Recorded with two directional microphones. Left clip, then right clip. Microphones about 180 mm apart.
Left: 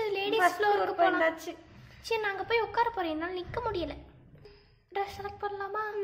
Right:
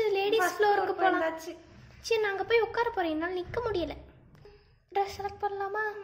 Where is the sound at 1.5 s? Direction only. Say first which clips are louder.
Left 1 dB; 45° left (ahead or behind).